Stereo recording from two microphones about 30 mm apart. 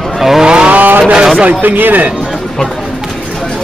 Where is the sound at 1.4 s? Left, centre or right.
Right.